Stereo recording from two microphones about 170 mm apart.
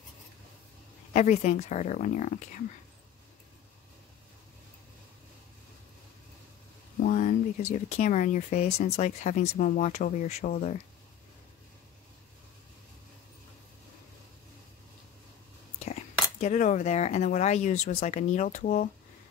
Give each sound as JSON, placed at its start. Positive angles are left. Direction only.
{"t": 1.1, "sound": "speech", "side_deg": 45}
{"t": 7.0, "sound": "speech", "side_deg": 50}
{"t": 16.3, "sound": "speech", "side_deg": 45}